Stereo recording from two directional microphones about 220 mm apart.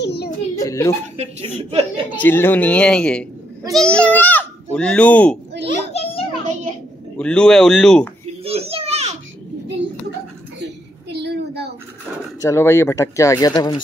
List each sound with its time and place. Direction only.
0.0 s a sound: 50° left (ahead or behind)
0.6 s speech: 15° left (ahead or behind)
1.1 s a woman's voice: 30° right (ahead or behind)
2.1 s speech: 10° left (ahead or behind)
5.7 s children playing: 25° left (ahead or behind)
7.2 s speech: 5° left (ahead or behind)
8.5 s children playing: 25° right (ahead or behind)
10.6 s a sound: 50° right (ahead or behind)
12.4 s speech: 10° left (ahead or behind)